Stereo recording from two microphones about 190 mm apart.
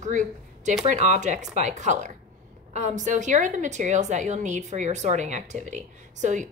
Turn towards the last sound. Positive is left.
turn(degrees=-40)  # may be behind; listen again after turning